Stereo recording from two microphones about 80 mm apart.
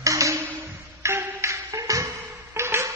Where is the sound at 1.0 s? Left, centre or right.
Right.